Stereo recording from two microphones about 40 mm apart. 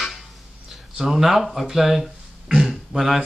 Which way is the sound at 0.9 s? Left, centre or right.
Centre.